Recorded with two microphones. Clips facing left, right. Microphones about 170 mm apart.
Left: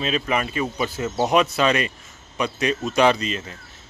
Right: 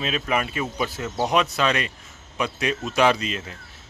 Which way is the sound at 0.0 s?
Centre (ahead or behind).